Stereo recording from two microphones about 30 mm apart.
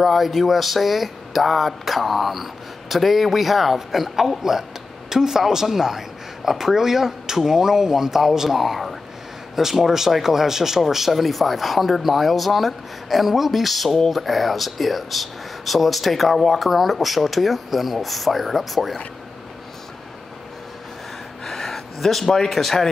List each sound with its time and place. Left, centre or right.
0.0 s a man's voice: centre
21.5 s a sound: centre
22.5 s speech: centre